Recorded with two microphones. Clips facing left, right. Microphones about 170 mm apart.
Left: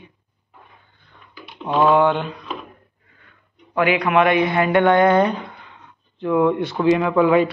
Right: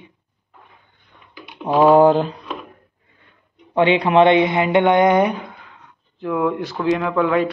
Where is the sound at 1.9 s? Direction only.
35° right (ahead or behind).